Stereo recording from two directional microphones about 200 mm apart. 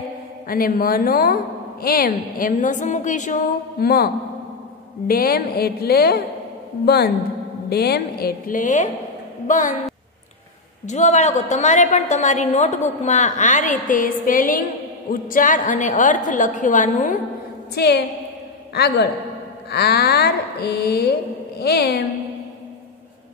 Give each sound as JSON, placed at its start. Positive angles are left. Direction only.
{"t": 0.5, "sound": "a woman's voice", "side_deg": 45}
{"t": 3.8, "sound": "a woman's voice", "side_deg": 50}
{"t": 7.7, "sound": "a woman's voice", "side_deg": 50}
{"t": 10.9, "sound": "a woman's voice", "side_deg": 35}
{"t": 17.7, "sound": "a woman's voice", "side_deg": 55}